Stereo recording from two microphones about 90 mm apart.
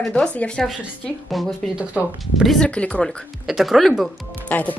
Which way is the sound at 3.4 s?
Centre (ahead or behind).